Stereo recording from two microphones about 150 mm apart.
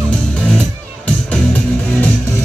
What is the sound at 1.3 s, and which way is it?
Music, 10° left (ahead or behind).